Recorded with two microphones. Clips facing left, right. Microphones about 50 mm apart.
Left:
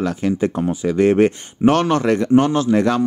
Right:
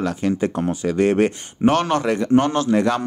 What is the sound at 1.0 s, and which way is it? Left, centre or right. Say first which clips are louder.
Speech: left 4 dB; left.